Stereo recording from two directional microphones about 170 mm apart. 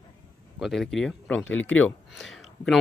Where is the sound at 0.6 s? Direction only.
Centre (ahead or behind).